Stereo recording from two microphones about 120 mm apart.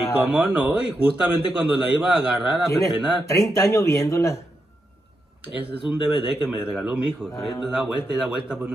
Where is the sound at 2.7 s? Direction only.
25° left (ahead or behind).